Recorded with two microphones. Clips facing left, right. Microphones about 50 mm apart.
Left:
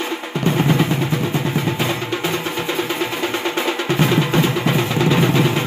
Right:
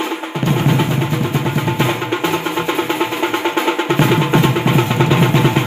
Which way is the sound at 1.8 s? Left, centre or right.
Centre.